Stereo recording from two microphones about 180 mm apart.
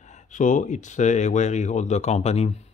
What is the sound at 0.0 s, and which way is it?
Speech, 40° left (ahead or behind).